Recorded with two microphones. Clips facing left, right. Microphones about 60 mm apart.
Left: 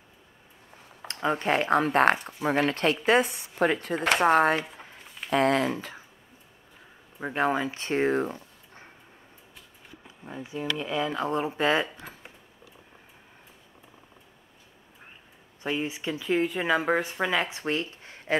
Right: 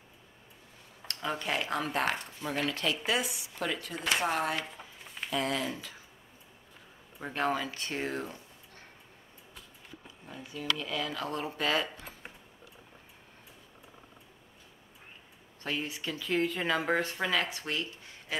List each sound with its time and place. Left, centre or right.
1.3 s speech: left
7.2 s speech: left
10.2 s speech: left
15.6 s speech: centre; by 18.4 s left